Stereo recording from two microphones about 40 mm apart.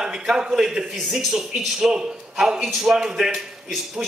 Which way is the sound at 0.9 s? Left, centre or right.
Centre.